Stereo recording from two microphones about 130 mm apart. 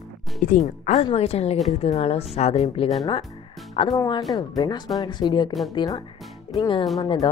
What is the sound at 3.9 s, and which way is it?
Speech, 30° left (ahead or behind).